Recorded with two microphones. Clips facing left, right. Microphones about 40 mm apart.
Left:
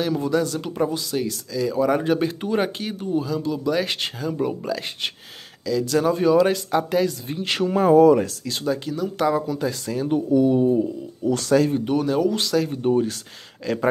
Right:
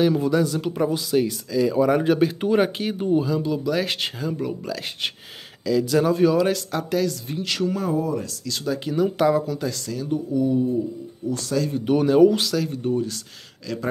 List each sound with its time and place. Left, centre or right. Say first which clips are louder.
0.0 s speech: right 2 dB; centre
4.4 s speech: left 3 dB; centre
4.6 s speech: left 2 dB; centre
7.4 s speech: left 3 dB; left
7.9 s speech: left 11 dB; left
8.7 s speech: right 4 dB; centre
9.2 s speech: left 2 dB; centre
9.7 s speech: left 3 dB; left
10.0 s speech: left 4 dB; left
11.2 s speech: left 5 dB; left
11.8 s speech: right 5 dB; centre
12.4 s speech: left 3 dB; centre
12.8 s speech: left 4 dB; left